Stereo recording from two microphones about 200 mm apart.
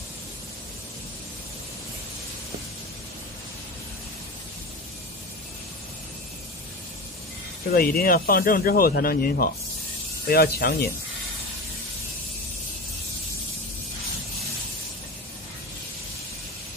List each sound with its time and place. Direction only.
7.7 s speech: 45° left (ahead or behind)